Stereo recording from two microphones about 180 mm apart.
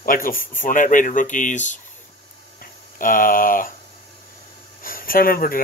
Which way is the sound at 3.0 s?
50° left (ahead or behind).